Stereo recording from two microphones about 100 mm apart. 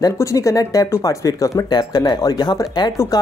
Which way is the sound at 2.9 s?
30° left (ahead or behind).